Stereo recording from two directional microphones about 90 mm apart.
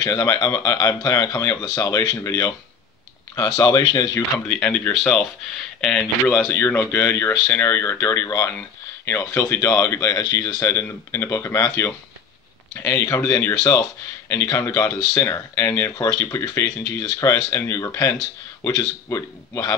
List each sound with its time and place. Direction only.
0.0 s speech: 40° left (ahead or behind)
4.5 s speech: 10° left (ahead or behind)
6.5 s speech: 25° left (ahead or behind)
13.6 s speech: 35° left (ahead or behind)